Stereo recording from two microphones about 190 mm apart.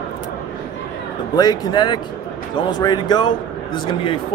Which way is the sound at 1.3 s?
20° left (ahead or behind).